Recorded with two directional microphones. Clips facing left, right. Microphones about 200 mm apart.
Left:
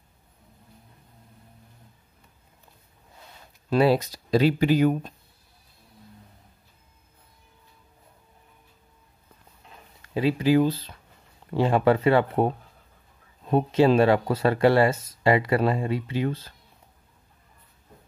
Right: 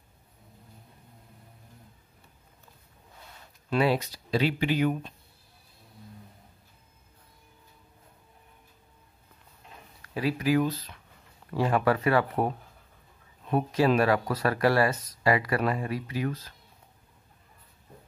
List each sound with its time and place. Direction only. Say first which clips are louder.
3.7 s speech: left 5 dB; 40° left (ahead or behind)
10.0 s speech: left 5 dB; 25° left (ahead or behind)